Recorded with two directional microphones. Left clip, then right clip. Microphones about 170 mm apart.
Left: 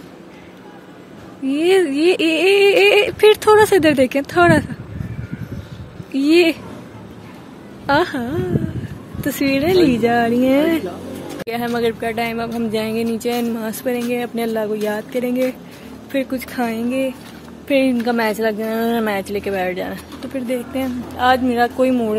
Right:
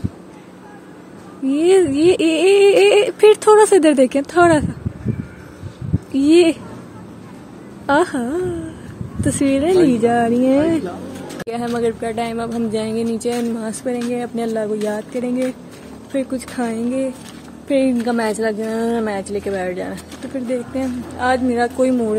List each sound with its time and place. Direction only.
1.5 s speech: 15° right (ahead or behind)
6.1 s a woman's voice: 20° right (ahead or behind)
7.8 s a woman's voice: 20° right (ahead or behind)